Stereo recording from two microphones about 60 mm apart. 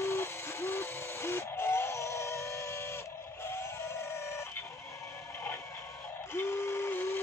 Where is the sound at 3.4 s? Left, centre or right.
Left.